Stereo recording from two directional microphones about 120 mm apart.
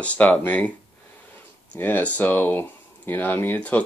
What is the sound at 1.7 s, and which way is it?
Speech, 15° left (ahead or behind).